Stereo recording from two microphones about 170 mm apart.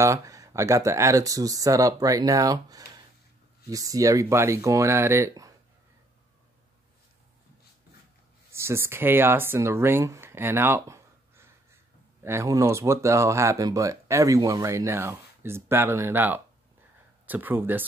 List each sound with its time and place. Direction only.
0.0 s speech: 20° right (ahead or behind)
8.5 s speech: 15° right (ahead or behind)